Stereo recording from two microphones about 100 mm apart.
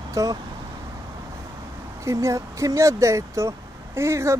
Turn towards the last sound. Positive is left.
turn(degrees=-30)  # may be behind; listen again after turning